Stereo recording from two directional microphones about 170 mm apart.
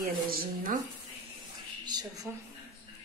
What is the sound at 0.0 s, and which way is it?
Speech, 60° right (ahead or behind).